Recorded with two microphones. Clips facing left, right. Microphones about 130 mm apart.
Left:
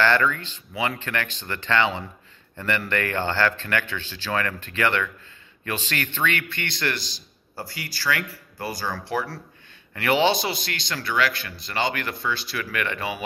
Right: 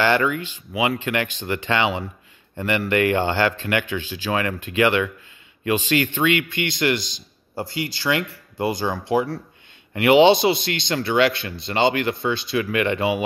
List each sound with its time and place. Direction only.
0.0 s a man's voice: 15° right (ahead or behind)